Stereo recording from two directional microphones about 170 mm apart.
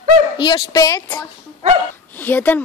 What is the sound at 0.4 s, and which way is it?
Speech, 25° left (ahead or behind).